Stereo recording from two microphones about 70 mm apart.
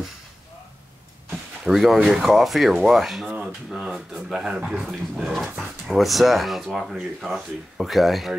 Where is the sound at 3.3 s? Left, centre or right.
Right.